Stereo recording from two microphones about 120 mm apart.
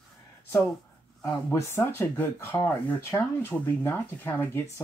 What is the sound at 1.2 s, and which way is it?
Speech, 20° left (ahead or behind).